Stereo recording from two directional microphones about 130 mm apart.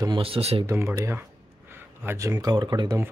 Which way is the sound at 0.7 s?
20° right (ahead or behind).